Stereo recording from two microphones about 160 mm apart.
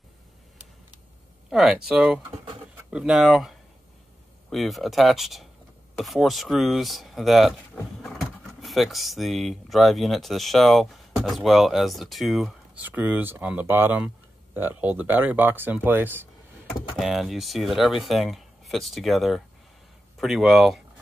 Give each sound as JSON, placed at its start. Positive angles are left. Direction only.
{"t": 1.5, "sound": "speech", "side_deg": -5}
{"t": 8.5, "sound": "speech", "side_deg": 0}
{"t": 16.9, "sound": "speech", "side_deg": 0}